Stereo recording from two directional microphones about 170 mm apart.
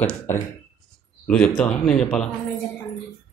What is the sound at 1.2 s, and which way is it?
Speech, 5° left (ahead or behind).